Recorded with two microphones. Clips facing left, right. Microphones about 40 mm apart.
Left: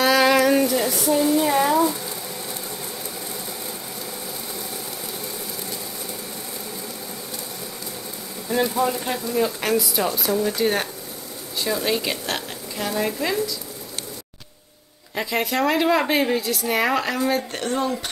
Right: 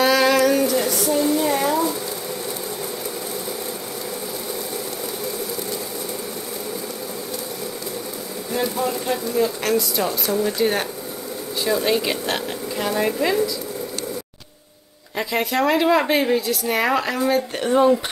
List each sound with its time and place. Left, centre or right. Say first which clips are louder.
0.0 s a sound: even; centre
8.5 s a woman's voice: left 2 dB; centre
15.1 s a woman's voice: right 1 dB; centre
17.6 s speech: right 9 dB; centre